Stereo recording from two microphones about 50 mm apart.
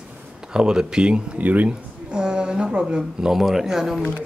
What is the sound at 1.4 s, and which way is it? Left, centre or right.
Speech, right.